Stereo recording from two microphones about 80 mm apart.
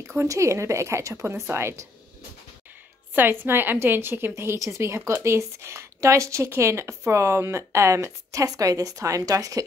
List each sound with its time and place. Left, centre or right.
0.0 s a woman's voice: right
3.2 s a woman's voice: right